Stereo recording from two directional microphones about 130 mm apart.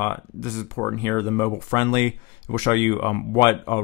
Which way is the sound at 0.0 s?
15° left (ahead or behind).